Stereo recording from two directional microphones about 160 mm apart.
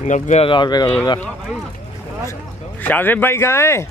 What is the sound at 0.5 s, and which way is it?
Speech, 30° left (ahead or behind).